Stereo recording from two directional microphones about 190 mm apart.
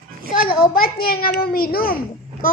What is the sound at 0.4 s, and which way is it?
A child's voice, 50° left (ahead or behind).